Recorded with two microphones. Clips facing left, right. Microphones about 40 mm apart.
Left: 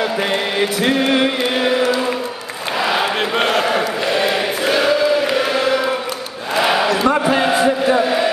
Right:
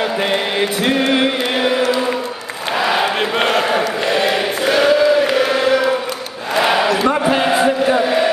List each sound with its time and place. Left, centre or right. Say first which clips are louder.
0.3 s chant: right 1 dB; centre
2.8 s a sound: right 1 dB; centre
5.5 s chant: right 2 dB; centre
6.5 s battle cry: right 1 dB; centre
7.0 s a sound: even; centre
7.3 s chant: right 1 dB; centre